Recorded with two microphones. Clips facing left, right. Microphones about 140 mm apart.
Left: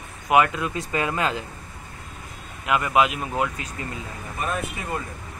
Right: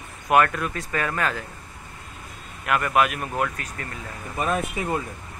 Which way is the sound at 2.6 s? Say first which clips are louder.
Left 1 dB; 15° left (ahead or behind).